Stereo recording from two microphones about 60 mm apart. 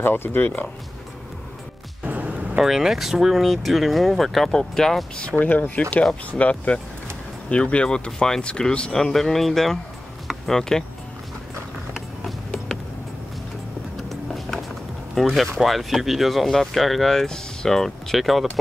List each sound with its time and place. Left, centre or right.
0.0 s speech: left
2.0 s a sound: right
2.5 s speech: centre
5.4 s speech: left; by 9.8 s centre
10.2 s music: centre
13.9 s vehicle: centre
15.3 s speech: centre